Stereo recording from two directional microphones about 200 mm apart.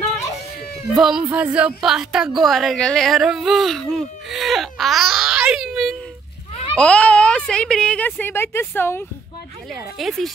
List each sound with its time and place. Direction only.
0.9 s a woman's voice: centre (ahead or behind)
9.9 s a woman's voice: centre (ahead or behind)